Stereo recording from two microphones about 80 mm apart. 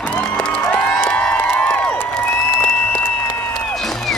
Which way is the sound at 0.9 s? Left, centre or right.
Left.